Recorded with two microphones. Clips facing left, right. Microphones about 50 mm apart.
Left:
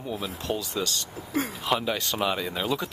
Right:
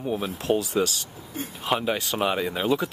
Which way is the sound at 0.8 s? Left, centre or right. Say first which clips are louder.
Right 1 dB; left.